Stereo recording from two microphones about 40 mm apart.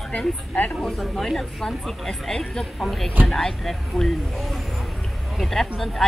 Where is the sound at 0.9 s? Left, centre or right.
Centre.